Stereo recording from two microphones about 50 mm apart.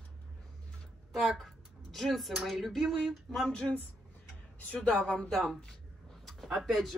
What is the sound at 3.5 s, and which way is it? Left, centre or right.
Speech, left.